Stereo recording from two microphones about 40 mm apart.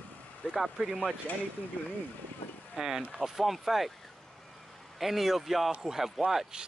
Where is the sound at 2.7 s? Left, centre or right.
Centre.